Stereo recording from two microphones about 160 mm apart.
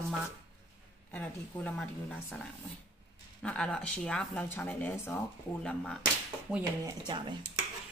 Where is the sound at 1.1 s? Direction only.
10° left (ahead or behind).